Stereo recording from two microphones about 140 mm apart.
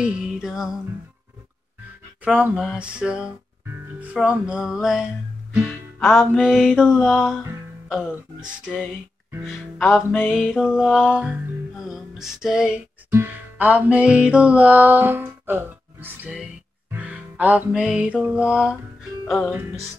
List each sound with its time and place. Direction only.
0.0 s music: 5° right (ahead or behind)
2.2 s music: 10° right (ahead or behind)
9.9 s music: 15° left (ahead or behind)
10.6 s music: 5° right (ahead or behind)